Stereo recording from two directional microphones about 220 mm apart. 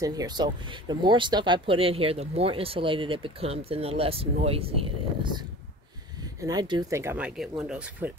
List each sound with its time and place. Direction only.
0.0 s speech: 15° right (ahead or behind)